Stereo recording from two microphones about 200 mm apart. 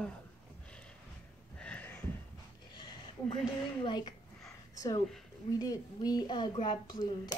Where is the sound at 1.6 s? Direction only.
5° left (ahead or behind).